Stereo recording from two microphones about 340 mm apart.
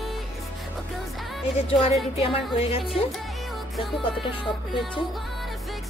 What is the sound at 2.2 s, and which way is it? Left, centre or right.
Music, centre.